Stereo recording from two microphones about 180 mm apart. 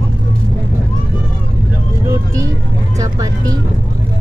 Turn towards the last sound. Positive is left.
turn(degrees=-20)  # may be behind; listen again after turning